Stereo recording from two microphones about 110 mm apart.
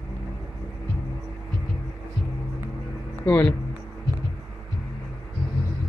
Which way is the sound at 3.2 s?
20° left (ahead or behind).